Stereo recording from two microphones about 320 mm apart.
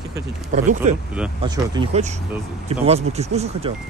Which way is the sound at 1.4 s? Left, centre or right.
Centre.